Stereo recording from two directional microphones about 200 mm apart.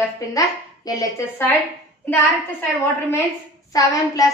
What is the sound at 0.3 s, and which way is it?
A woman's voice, 15° left (ahead or behind).